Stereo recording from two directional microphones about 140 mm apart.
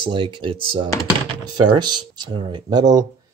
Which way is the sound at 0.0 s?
35° right (ahead or behind).